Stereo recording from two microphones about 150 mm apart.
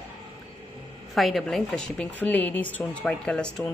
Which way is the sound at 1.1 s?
Centre (ahead or behind).